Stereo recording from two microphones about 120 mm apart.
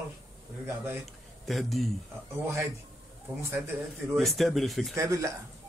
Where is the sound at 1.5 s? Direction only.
Centre (ahead or behind).